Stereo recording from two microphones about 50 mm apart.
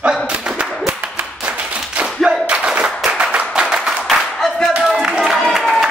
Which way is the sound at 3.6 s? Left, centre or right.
Centre.